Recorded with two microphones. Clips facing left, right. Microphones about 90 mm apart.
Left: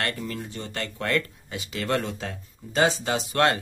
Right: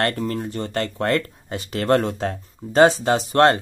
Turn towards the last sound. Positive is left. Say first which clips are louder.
# right 7 dB
turn(degrees=-40)  # may be behind; listen again after turning